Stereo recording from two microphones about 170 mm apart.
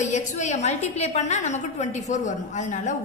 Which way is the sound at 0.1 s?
45° left (ahead or behind).